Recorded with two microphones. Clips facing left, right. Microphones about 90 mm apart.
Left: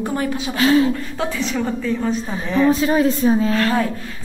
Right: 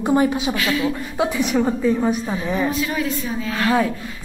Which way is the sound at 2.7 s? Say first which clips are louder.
Left 7 dB; 35° left (ahead or behind).